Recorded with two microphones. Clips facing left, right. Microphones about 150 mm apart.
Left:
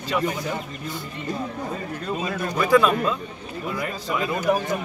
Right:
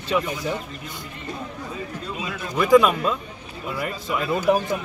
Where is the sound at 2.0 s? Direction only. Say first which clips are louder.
Left 4 dB; 50° left (ahead or behind).